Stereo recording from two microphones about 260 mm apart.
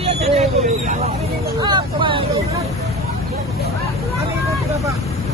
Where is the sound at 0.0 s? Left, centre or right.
Right.